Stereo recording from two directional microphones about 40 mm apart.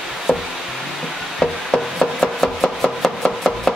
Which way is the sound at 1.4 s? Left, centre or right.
Centre.